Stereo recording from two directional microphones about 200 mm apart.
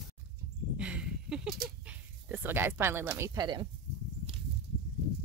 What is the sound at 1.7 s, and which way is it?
Speech, 5° right (ahead or behind).